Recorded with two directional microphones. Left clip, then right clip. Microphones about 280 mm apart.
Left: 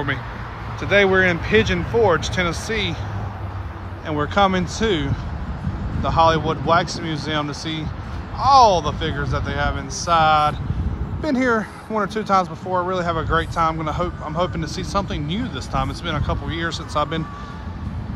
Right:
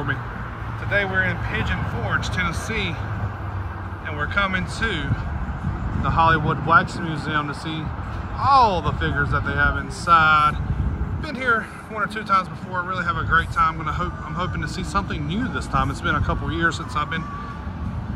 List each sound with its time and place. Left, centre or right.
1.2 s speech: centre
4.3 s speech: centre